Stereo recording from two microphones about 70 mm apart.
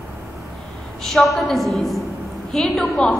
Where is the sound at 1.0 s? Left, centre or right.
Centre.